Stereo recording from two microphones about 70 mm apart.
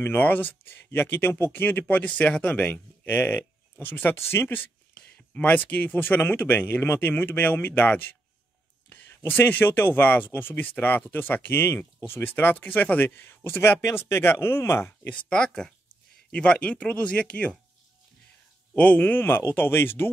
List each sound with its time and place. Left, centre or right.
0.0 s speech: left
2.7 s speech: left
4.9 s speech: centre; by 15.0 s left
15.0 s speech: centre
18.8 s speech: left